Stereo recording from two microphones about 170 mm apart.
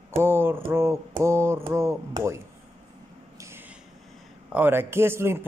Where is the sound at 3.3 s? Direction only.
15° right (ahead or behind).